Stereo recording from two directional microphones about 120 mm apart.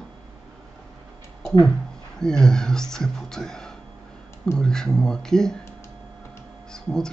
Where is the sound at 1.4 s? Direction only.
25° left (ahead or behind).